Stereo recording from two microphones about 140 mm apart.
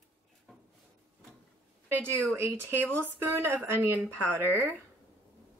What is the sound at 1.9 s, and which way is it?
A woman's voice, 15° right (ahead or behind).